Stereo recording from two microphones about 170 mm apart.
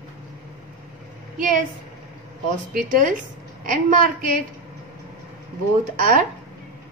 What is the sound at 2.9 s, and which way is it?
A woman's voice, 50° right (ahead or behind).